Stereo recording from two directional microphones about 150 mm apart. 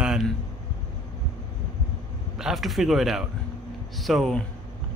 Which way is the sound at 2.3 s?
Centre (ahead or behind).